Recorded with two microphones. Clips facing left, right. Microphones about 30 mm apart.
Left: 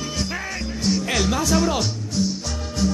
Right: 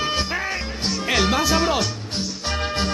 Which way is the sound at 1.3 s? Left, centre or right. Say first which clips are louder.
Right 1 dB; right.